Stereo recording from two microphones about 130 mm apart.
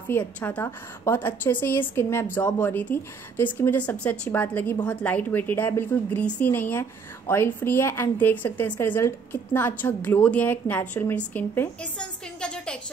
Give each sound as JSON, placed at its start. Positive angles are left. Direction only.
{"t": 0.1, "sound": "a woman's voice", "side_deg": 10}